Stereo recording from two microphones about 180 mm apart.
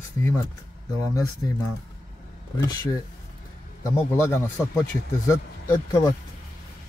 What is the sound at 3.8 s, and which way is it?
Speech, 15° left (ahead or behind).